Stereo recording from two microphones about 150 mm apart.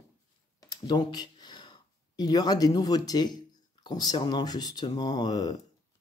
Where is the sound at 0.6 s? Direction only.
25° left (ahead or behind).